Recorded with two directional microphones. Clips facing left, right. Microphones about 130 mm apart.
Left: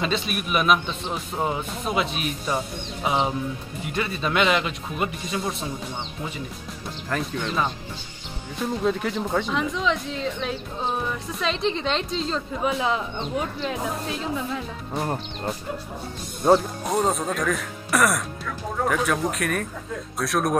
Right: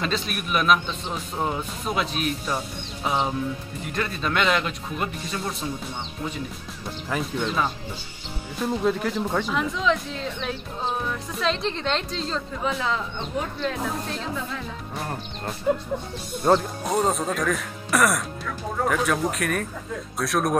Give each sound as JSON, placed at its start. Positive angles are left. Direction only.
{"t": 0.0, "sound": "speech", "side_deg": 5}
{"t": 7.1, "sound": "speech", "side_deg": -5}
{"t": 12.7, "sound": "speech", "side_deg": 15}
{"t": 16.4, "sound": "speech", "side_deg": 0}